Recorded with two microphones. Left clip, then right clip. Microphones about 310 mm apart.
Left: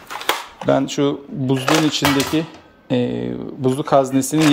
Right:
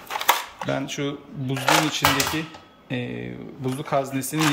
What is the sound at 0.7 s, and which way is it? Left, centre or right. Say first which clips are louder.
Speech: left 11 dB; centre.